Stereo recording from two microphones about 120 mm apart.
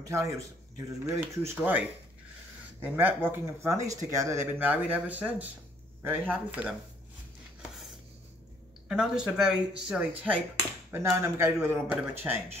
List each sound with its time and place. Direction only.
0.1 s speech: 25° right (ahead or behind)
8.8 s speech: 5° right (ahead or behind)
10.9 s speech: 25° right (ahead or behind)